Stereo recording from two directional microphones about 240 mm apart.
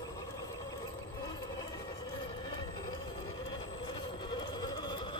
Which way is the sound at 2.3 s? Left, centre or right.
Centre.